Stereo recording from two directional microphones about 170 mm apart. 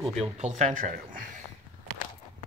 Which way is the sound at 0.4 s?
45° right (ahead or behind).